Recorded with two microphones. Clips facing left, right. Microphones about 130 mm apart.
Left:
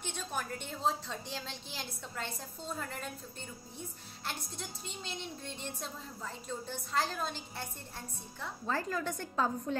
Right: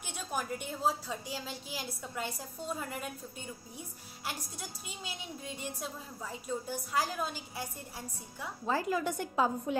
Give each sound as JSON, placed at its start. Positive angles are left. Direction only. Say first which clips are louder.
{"t": 0.0, "sound": "a woman's voice", "louder": "right 1 dB", "side_deg": -10}
{"t": 4.3, "sound": "a woman's voice", "louder": "right 1 dB", "side_deg": -10}